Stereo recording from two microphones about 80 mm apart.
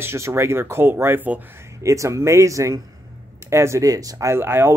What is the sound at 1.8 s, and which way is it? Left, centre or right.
Speech, right.